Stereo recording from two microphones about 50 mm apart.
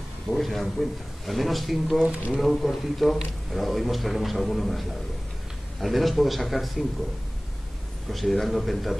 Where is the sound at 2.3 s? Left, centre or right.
Centre.